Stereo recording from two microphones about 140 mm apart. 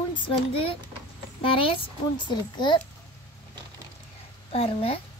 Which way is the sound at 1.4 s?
40° left (ahead or behind).